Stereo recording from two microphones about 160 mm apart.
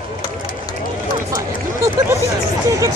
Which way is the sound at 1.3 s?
20° right (ahead or behind).